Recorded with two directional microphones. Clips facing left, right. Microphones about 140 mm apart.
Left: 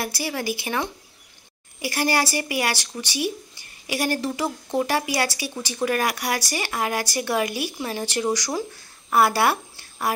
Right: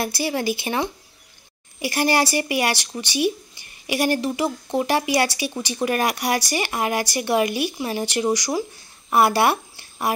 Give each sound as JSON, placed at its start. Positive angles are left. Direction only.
{"t": 0.0, "sound": "speech", "side_deg": -25}